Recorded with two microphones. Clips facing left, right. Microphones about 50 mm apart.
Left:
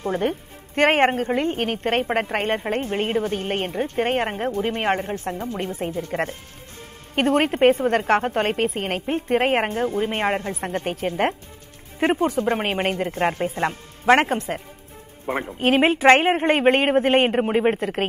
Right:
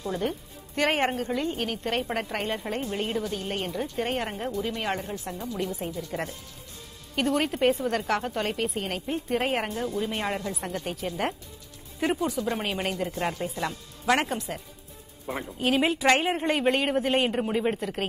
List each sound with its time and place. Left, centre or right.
0.0 s a woman's voice: left